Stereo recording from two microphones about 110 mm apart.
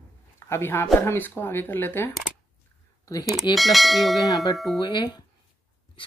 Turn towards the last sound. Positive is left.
turn(degrees=45)  # may be behind; listen again after turning